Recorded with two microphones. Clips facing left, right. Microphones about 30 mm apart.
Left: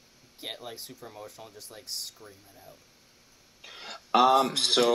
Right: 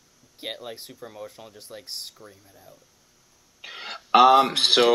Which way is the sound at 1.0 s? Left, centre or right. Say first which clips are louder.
Right 4 dB; centre.